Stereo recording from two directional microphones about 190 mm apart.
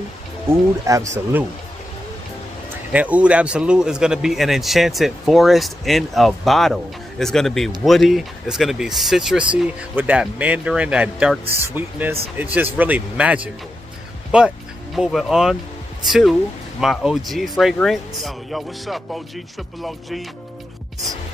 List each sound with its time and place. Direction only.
0.5 s speech: 15° right (ahead or behind)
2.9 s speech: 5° right (ahead or behind)